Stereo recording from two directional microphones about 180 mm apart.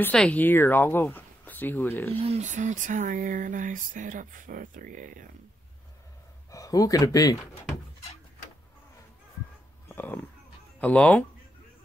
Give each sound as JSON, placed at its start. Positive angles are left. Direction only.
{"t": 0.0, "sound": "speech", "side_deg": 5}
{"t": 2.1, "sound": "speech", "side_deg": -35}
{"t": 6.5, "sound": "speech", "side_deg": 20}
{"t": 9.8, "sound": "speech", "side_deg": 10}